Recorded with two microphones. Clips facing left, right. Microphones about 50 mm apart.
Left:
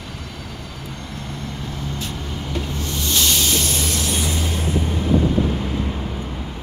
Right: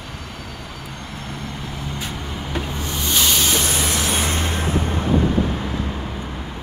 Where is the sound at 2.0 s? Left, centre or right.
Right.